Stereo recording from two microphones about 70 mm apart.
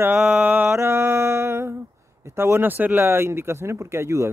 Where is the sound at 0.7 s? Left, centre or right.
Right.